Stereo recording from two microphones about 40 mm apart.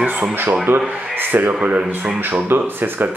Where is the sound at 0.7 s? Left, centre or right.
Right.